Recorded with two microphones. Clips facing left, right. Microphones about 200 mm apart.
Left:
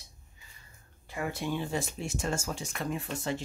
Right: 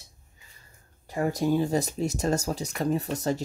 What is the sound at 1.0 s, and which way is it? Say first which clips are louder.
Speech: right 8 dB; 40° right (ahead or behind).